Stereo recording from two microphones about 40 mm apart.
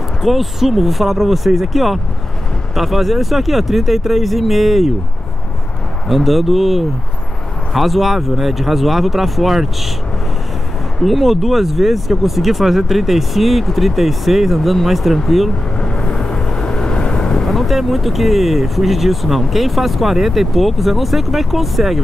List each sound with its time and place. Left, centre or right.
0.2 s speech: centre
6.0 s speech: centre
11.0 s speech: centre
15.8 s vehicle: left
17.4 s speech: centre